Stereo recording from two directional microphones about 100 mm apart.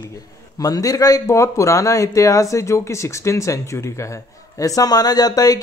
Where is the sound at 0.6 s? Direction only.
35° left (ahead or behind).